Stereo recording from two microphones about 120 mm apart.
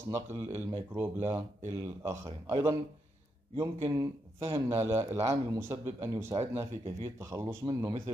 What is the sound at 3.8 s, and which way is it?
Speech, 30° right (ahead or behind).